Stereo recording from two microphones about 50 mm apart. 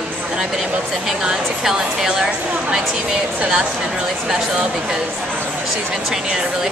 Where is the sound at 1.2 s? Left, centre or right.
Centre.